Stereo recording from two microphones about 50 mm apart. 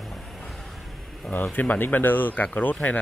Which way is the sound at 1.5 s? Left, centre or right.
Left.